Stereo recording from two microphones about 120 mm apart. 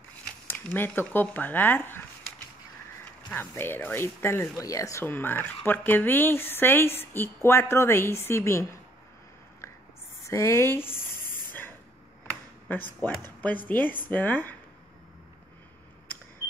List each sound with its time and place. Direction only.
0.5 s speech: 15° left (ahead or behind)
3.3 s speech: 15° left (ahead or behind)
10.2 s speech: 25° left (ahead or behind)
12.6 s speech: 15° left (ahead or behind)